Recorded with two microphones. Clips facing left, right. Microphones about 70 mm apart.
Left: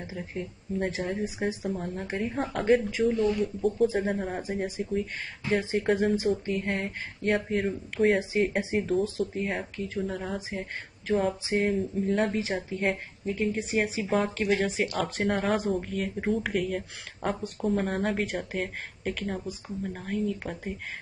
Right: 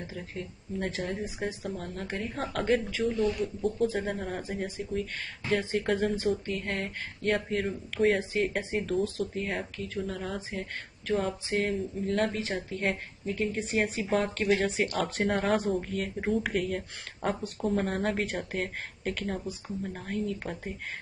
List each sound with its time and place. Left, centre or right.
0.0 s speech: centre
3.8 s speech: centre